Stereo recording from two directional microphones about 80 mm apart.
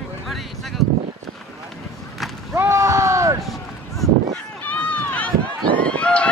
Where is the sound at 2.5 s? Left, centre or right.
Right.